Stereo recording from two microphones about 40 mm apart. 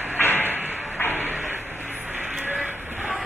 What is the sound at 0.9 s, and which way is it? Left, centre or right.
Music, left.